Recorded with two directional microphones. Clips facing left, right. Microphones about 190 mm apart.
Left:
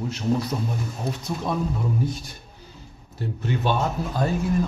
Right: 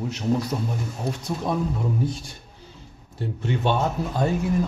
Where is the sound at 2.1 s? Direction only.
30° right (ahead or behind).